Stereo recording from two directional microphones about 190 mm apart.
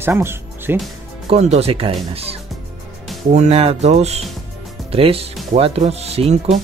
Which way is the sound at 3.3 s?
35° right (ahead or behind).